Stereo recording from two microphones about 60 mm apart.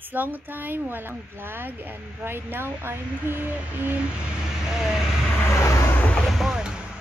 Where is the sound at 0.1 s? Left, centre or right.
Right.